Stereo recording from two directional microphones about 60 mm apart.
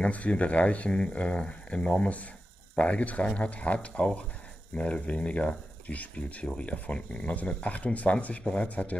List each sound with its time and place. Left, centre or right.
0.0 s speech: left